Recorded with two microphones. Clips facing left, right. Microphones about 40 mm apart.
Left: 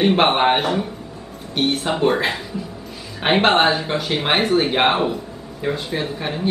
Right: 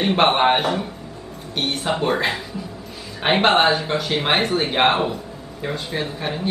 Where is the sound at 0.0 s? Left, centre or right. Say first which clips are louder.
Left 1 dB; centre.